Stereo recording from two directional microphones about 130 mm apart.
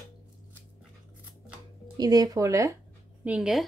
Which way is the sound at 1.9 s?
30° right (ahead or behind).